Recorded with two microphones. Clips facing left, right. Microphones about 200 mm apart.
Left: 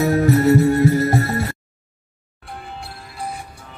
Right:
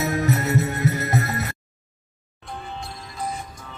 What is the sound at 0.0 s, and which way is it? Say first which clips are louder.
Music: left 8 dB; 30° left (ahead or behind).